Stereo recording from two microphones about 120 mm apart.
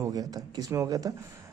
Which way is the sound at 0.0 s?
30° right (ahead or behind).